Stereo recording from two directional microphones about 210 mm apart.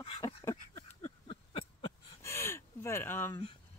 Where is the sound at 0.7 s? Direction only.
30° left (ahead or behind).